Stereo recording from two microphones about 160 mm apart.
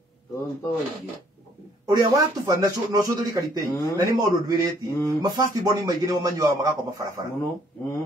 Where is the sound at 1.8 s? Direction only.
25° right (ahead or behind).